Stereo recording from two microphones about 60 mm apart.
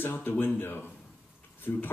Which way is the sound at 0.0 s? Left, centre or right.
Left.